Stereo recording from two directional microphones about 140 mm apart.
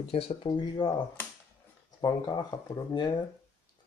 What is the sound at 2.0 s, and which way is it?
Speech, 30° left (ahead or behind).